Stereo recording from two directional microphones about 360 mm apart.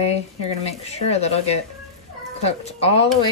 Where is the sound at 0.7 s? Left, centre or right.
Centre.